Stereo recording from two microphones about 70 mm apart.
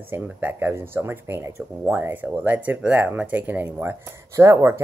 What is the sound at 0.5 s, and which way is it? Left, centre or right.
Speech, right.